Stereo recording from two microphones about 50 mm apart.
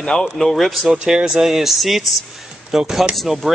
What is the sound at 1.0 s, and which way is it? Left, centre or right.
Speech, centre.